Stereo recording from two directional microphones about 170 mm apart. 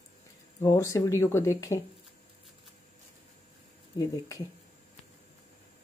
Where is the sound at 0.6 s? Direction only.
20° left (ahead or behind).